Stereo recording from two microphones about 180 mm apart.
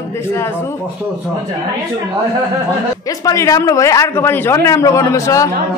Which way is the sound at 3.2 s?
20° left (ahead or behind).